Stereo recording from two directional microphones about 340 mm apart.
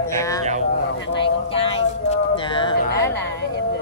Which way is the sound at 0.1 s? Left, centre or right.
Centre.